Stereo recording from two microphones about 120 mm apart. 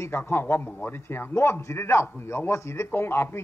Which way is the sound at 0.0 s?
20° left (ahead or behind).